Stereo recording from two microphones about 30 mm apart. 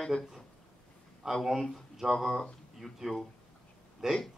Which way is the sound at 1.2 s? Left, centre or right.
Centre.